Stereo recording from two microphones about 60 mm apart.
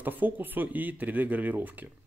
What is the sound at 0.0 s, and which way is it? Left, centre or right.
Speech, right.